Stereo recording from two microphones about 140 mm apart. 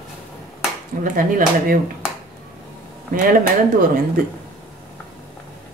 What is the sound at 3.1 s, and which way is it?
Speech, 80° right.